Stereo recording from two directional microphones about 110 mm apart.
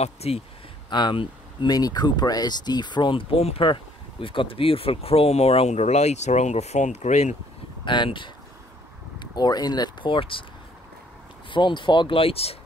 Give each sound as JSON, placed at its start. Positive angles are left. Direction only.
{"t": 0.0, "sound": "speech", "side_deg": 70}
{"t": 0.8, "sound": "speech", "side_deg": 45}
{"t": 1.7, "sound": "speech", "side_deg": 35}
{"t": 7.8, "sound": "speech", "side_deg": 45}
{"t": 11.5, "sound": "speech", "side_deg": 45}